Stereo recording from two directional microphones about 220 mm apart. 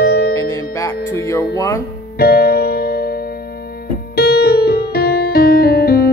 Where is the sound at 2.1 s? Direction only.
45° left (ahead or behind).